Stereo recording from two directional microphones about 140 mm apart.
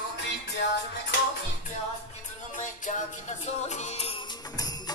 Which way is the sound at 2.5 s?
65° left (ahead or behind).